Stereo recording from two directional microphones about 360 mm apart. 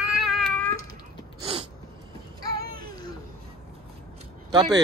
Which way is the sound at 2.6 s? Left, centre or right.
Right.